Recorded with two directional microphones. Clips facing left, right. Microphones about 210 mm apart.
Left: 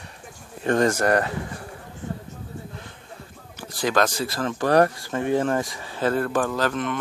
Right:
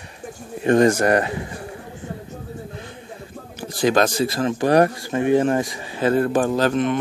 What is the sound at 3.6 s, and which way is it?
Speech, 20° right (ahead or behind).